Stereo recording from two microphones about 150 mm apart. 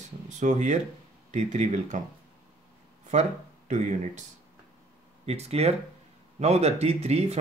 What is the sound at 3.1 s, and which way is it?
Speech, 50° right (ahead or behind).